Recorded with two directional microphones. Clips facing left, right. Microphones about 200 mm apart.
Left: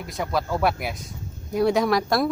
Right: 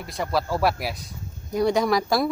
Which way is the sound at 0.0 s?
Centre (ahead or behind).